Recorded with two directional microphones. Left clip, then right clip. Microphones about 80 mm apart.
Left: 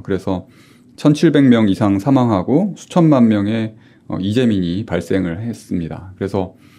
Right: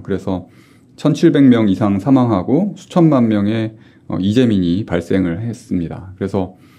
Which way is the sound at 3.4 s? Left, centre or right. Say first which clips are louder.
Right 1 dB; centre.